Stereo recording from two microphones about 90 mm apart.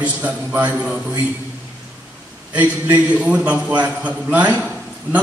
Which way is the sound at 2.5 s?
20° right (ahead or behind).